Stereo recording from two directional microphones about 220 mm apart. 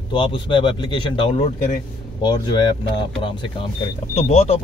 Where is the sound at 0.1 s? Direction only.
20° left (ahead or behind).